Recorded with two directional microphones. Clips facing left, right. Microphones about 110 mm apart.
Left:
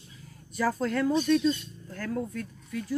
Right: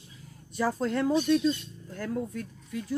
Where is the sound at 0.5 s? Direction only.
20° right (ahead or behind).